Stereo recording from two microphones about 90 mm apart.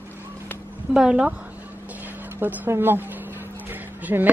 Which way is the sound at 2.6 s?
25° right (ahead or behind).